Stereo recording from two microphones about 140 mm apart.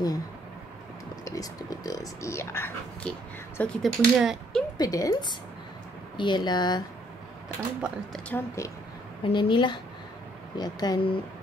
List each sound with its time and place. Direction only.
1.2 s speech: 25° left (ahead or behind); by 4.6 s centre (ahead or behind)
4.7 s a woman's voice: 25° left (ahead or behind)
7.4 s speech: 5° right (ahead or behind)
8.3 s speech: 20° left (ahead or behind)
9.2 s a woman's voice: 35° left (ahead or behind)